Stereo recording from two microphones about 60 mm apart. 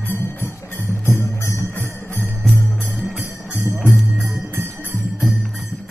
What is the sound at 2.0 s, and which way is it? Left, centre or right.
Jingle bell, right.